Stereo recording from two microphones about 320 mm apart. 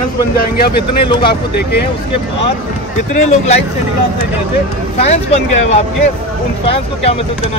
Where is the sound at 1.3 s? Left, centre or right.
Left.